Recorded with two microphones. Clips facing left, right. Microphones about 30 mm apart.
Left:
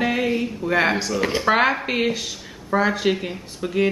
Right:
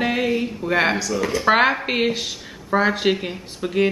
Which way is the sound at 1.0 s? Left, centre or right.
Centre.